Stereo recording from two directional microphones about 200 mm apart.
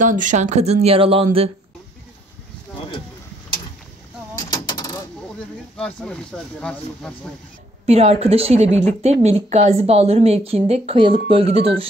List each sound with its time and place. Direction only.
0.0 s speech: 40° right (ahead or behind)
4.4 s a sound: 20° left (ahead or behind)
5.8 s speech: 5° left (ahead or behind)
7.8 s speech: 30° right (ahead or behind)